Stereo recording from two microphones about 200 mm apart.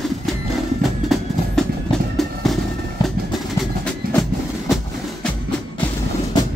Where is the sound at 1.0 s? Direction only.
Centre (ahead or behind).